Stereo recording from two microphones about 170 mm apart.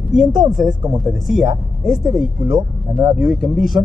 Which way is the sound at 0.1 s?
Centre (ahead or behind).